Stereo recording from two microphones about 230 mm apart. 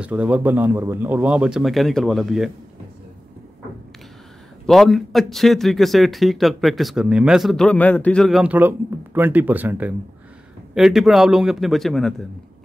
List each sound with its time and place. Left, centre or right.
0.0 s speech: centre
4.6 s speech: centre